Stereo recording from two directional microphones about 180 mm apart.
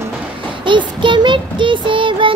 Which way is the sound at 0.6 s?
25° right (ahead or behind).